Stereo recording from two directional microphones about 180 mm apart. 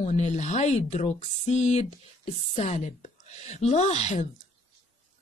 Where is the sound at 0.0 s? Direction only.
40° left (ahead or behind).